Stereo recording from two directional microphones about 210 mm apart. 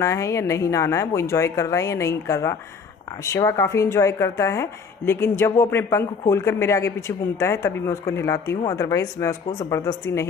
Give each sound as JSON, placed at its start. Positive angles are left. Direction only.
{"t": 0.0, "sound": "a woman's voice", "side_deg": 15}